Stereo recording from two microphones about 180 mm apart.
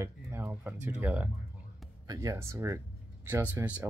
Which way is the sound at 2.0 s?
20° right (ahead or behind).